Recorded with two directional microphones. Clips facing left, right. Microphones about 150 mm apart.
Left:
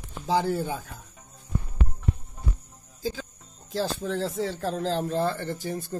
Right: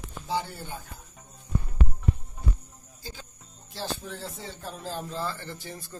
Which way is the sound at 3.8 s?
90° left.